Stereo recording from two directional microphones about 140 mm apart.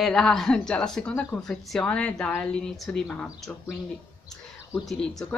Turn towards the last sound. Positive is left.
turn(degrees=5)  # may be behind; listen again after turning